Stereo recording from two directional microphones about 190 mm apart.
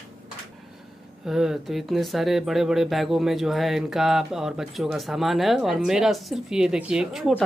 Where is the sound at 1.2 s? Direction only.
5° right (ahead or behind).